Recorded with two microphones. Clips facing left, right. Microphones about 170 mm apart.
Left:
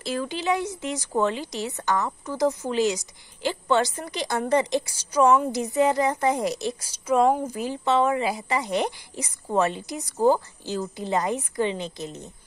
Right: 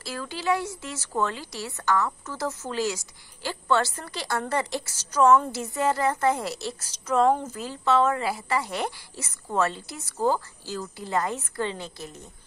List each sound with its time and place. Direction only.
0.0 s speech: 20° left (ahead or behind)